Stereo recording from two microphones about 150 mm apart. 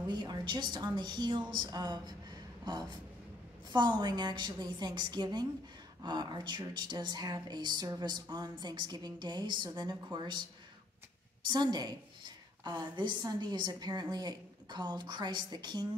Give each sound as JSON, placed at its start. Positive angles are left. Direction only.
{"t": 0.1, "sound": "a woman's voice", "side_deg": -30}
{"t": 4.0, "sound": "a woman's voice", "side_deg": -25}
{"t": 11.4, "sound": "a woman's voice", "side_deg": -30}